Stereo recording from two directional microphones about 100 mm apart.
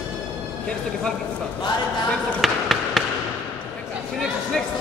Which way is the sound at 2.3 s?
Centre (ahead or behind).